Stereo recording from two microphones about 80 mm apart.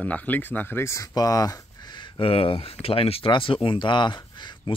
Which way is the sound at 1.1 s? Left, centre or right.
Left.